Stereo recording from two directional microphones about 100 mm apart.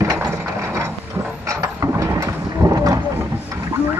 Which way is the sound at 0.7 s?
25° right (ahead or behind).